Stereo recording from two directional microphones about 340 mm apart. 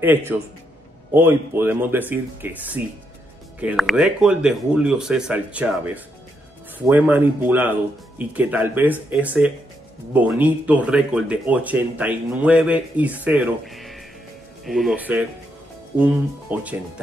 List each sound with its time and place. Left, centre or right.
0.0 s speech: centre